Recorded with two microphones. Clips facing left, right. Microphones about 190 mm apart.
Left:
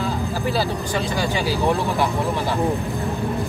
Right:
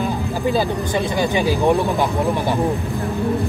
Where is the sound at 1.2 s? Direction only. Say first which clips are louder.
Right 5 dB; 20° right (ahead or behind).